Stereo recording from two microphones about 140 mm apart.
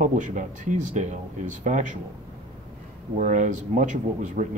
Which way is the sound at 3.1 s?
65° right (ahead or behind).